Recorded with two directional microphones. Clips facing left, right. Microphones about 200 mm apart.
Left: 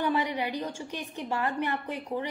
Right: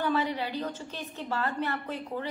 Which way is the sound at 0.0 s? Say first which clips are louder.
Even; 15° left (ahead or behind).